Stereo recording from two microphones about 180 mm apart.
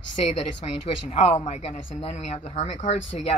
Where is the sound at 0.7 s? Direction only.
35° left (ahead or behind).